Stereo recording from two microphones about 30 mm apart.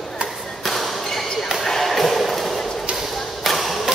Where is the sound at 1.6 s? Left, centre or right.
Centre.